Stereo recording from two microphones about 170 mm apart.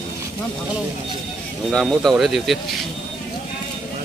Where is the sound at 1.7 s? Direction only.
Centre (ahead or behind).